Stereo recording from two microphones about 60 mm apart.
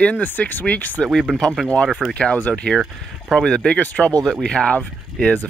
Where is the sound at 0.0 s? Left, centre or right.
Left.